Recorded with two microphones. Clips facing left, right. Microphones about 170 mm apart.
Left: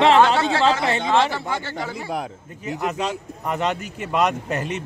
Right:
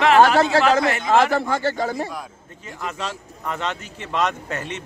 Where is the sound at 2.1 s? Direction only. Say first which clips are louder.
Left 6 dB; 60° left (ahead or behind).